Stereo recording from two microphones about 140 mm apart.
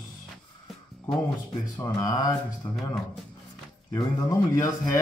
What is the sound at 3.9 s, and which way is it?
Speech, 25° left (ahead or behind).